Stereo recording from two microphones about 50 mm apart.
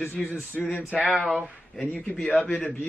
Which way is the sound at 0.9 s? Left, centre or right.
Centre.